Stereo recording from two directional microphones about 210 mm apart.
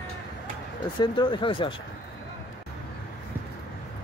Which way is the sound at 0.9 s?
20° left (ahead or behind).